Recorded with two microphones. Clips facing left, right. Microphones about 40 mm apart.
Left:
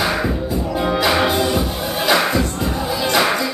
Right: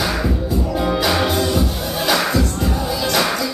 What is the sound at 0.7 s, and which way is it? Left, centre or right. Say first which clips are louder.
Music: left 2 dB; centre.